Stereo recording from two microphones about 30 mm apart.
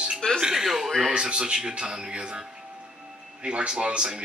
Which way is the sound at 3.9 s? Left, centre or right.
Right.